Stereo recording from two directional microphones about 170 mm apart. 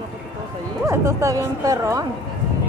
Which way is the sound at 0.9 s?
15° right (ahead or behind).